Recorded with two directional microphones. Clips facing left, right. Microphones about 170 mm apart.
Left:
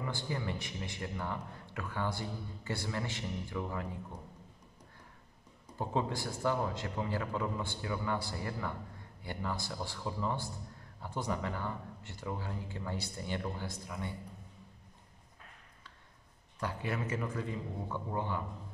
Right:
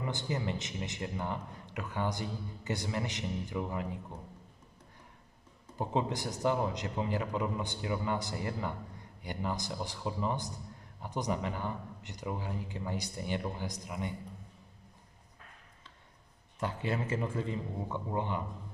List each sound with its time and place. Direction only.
0.0 s a man's voice: 20° right (ahead or behind)
5.8 s a man's voice: 20° right (ahead or behind)
16.5 s a man's voice: 25° right (ahead or behind)